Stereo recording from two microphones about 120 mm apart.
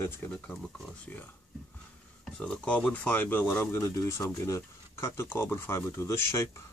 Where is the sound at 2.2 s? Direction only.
10° left (ahead or behind).